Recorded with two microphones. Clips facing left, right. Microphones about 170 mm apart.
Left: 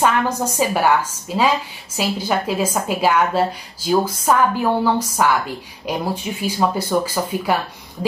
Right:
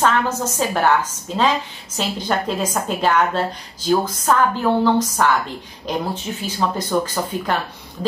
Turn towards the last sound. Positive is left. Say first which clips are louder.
# left 1 dB
turn(degrees=10)  # may be behind; listen again after turning